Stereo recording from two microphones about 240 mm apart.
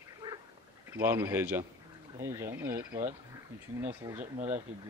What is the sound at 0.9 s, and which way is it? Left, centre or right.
Speech, centre.